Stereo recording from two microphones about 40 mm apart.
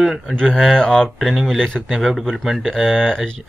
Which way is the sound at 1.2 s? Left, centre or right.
Centre.